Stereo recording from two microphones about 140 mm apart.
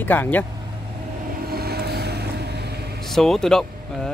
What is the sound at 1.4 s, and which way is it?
Vehicle, 90° right.